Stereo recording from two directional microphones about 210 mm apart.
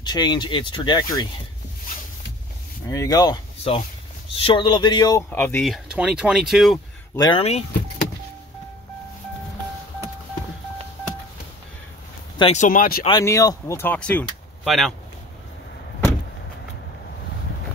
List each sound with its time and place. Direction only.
0.0 s speech: 20° left (ahead or behind)
2.9 s speech: 15° left (ahead or behind); by 6.8 s centre (ahead or behind)
7.2 s speech: 25° left (ahead or behind)
12.4 s speech: 30° left (ahead or behind)
13.0 s speech: 15° left (ahead or behind); by 15.0 s centre (ahead or behind)